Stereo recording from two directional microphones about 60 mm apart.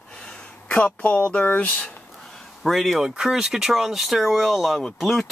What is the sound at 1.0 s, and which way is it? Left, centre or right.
Speech, left.